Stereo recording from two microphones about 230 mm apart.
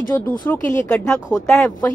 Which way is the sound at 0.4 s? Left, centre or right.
Centre.